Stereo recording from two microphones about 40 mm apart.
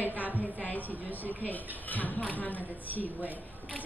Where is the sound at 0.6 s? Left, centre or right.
Left.